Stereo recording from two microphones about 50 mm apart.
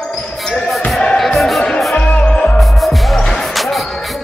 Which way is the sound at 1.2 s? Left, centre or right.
Centre.